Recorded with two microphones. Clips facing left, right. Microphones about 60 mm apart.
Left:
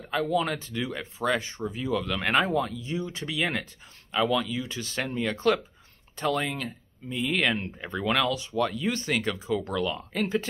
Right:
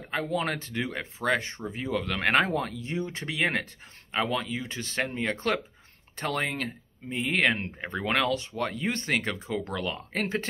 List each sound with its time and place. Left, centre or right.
0.1 s speech: right